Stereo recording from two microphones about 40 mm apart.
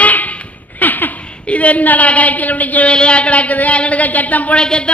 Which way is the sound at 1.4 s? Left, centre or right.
Left.